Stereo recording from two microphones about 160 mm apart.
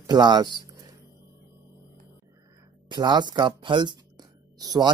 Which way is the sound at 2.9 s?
25° right (ahead or behind).